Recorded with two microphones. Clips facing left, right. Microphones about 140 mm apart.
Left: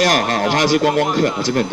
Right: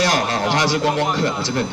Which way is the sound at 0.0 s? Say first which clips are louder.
Left 3 dB; 45° left (ahead or behind).